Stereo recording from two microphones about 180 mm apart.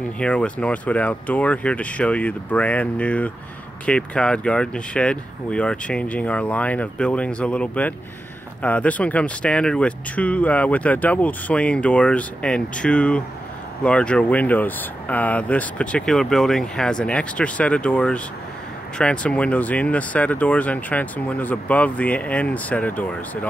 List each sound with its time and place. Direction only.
0.2 s speech: 5° left (ahead or behind)